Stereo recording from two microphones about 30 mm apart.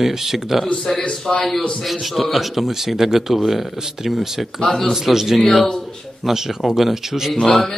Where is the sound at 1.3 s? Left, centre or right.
Centre.